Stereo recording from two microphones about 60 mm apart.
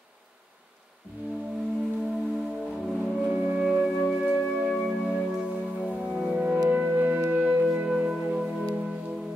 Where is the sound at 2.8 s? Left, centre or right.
Centre.